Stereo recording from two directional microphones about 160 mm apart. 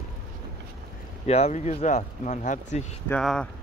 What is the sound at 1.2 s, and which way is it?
Speech, 40° left (ahead or behind).